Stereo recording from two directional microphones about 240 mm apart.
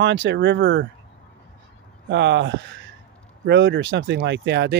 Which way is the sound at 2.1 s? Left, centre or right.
Right.